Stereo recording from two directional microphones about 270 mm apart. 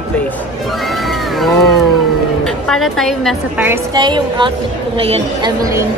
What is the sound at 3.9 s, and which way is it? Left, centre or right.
Speech, centre.